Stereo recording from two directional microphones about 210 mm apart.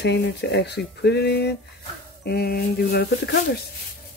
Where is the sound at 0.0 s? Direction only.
55° left (ahead or behind).